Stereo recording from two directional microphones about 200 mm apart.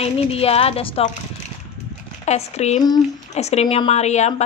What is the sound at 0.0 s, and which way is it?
A woman's voice, 30° left (ahead or behind).